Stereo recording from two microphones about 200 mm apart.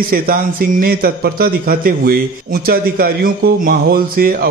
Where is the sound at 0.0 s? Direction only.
45° right (ahead or behind).